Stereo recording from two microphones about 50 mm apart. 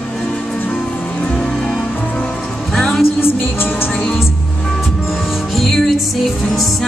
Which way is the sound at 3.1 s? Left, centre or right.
Left.